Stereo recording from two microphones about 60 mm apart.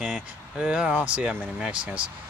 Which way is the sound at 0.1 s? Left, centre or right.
Centre.